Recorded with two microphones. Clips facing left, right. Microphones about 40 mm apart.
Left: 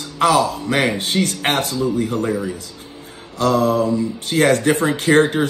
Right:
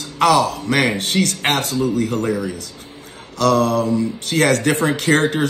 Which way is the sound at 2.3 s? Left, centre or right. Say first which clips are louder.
Even; left.